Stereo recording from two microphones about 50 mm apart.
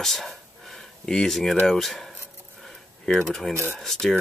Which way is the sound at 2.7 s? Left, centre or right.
Centre.